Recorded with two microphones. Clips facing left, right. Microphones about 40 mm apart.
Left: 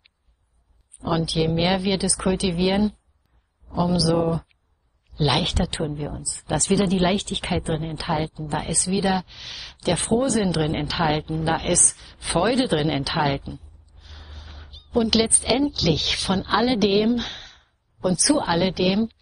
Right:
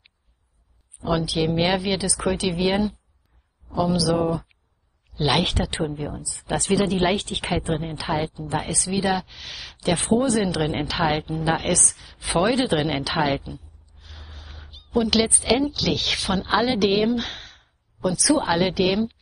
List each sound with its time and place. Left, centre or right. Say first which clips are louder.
1.0 s a woman's voice: even; centre
9.8 s speech: right 1 dB; centre